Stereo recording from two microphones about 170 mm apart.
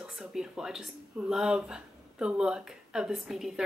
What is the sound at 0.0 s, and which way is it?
Speech, 5° right (ahead or behind).